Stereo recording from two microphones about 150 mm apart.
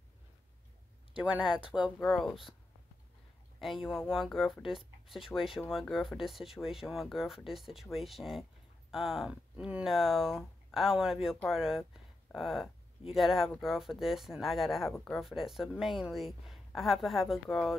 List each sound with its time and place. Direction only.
1.1 s speech: 5° right (ahead or behind)
3.9 s speech: 5° right (ahead or behind)